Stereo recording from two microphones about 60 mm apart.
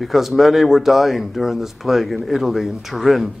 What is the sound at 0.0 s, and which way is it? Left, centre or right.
A man's voice, centre.